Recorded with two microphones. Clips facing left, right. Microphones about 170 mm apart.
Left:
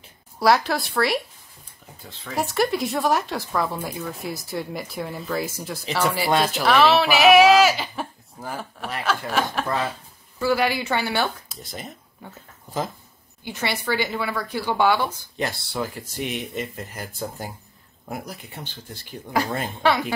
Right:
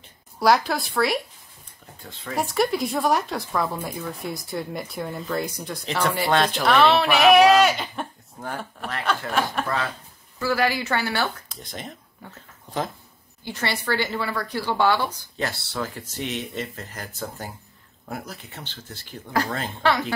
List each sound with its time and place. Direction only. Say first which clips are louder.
0.4 s speech: even; centre (ahead or behind)
10.4 s speech: left 1 dB; 20° left (ahead or behind)
11.4 s speech: even; 5° left (ahead or behind)
13.4 s speech: left 1 dB; 15° left (ahead or behind)